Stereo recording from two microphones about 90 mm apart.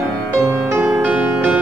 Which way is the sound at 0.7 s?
15° right (ahead or behind).